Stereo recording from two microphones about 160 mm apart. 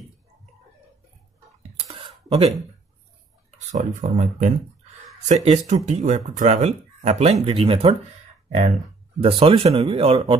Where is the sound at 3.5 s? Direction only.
50° right (ahead or behind).